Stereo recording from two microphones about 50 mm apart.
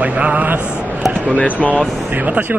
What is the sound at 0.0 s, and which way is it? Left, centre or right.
Speech, right.